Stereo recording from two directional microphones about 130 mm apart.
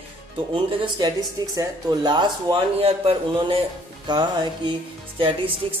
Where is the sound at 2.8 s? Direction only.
45° right (ahead or behind).